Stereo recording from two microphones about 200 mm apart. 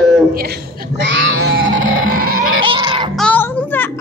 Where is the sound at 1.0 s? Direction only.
65° right (ahead or behind); by 2.6 s 45° right (ahead or behind).